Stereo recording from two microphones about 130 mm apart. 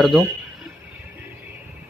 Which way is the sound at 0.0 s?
Centre (ahead or behind).